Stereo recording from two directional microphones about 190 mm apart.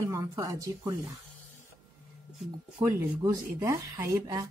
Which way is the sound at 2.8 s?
15° right (ahead or behind).